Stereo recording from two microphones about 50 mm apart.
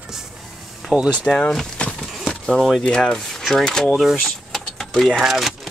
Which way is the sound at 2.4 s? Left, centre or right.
Centre.